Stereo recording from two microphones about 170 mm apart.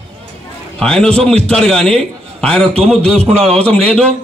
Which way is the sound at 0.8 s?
5° left (ahead or behind).